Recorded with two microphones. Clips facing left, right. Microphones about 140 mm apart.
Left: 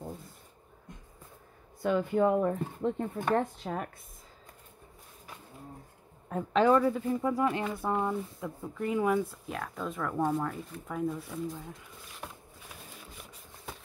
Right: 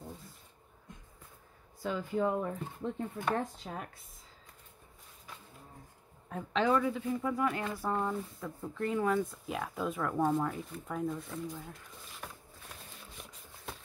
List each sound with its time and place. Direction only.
1.8 s speech: 60° left (ahead or behind)
6.2 s speech: 45° left (ahead or behind); by 9.4 s 10° left (ahead or behind)
9.5 s speech: 5° right (ahead or behind)